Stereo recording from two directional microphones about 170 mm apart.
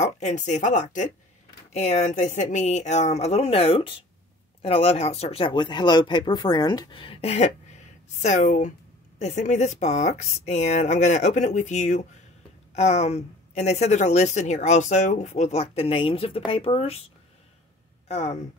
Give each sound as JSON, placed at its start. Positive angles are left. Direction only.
{"t": 0.0, "sound": "speech", "side_deg": 45}
{"t": 18.0, "sound": "speech", "side_deg": 40}